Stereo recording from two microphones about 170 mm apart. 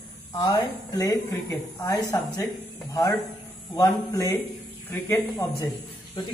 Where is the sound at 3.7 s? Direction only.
20° left (ahead or behind).